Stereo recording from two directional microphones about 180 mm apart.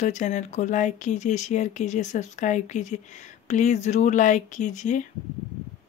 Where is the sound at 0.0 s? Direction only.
40° left (ahead or behind).